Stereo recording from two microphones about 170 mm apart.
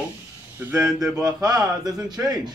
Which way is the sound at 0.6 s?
15° right (ahead or behind).